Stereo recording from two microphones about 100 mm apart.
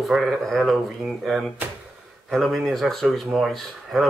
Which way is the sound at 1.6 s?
15° right (ahead or behind).